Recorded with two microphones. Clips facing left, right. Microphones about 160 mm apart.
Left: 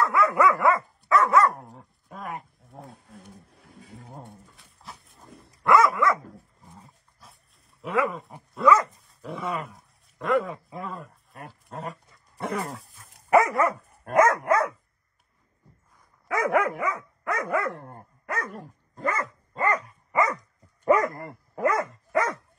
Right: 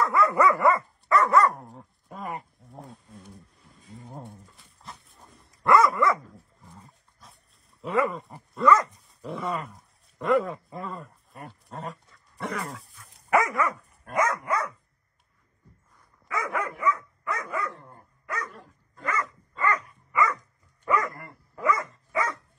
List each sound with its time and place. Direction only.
0.0 s dog: centre (ahead or behind)
3.6 s a sound: 75° left (ahead or behind)
4.0 s dog: centre (ahead or behind)
7.8 s speech: centre (ahead or behind)
12.4 s dog: 30° left (ahead or behind)
14.0 s dog: 60° left (ahead or behind)
16.3 s dog: 65° left (ahead or behind); by 21.4 s 40° left (ahead or behind)
21.5 s dog: 55° left (ahead or behind)